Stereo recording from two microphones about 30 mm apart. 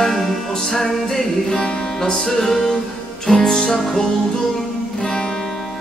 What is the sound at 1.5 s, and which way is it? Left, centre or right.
Music, left.